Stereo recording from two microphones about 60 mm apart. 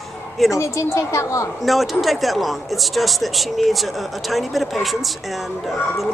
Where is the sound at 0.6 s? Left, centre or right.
Left.